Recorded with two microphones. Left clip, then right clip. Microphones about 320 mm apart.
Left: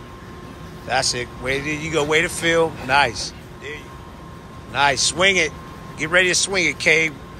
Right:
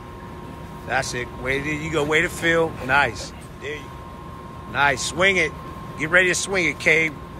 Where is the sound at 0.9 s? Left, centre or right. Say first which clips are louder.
Left 3 dB; centre.